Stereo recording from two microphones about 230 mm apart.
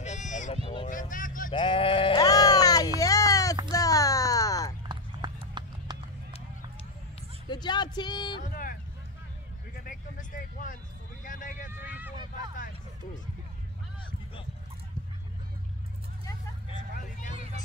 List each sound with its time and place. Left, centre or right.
0.0 s a sound: left
0.8 s vehicle: left
1.5 s sheep: left
3.0 s a sound: centre
4.8 s clip-clop: centre
7.4 s a sound: centre
8.4 s vehicle: left
9.8 s vehicle: left
12.2 s vehicle: centre
12.5 s music: left
16.9 s vehicle: left